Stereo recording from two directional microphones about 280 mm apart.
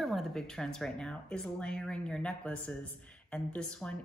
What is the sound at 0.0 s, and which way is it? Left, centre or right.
Speech, centre.